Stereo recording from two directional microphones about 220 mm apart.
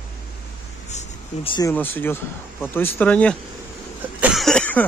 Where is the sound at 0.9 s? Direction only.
25° left (ahead or behind).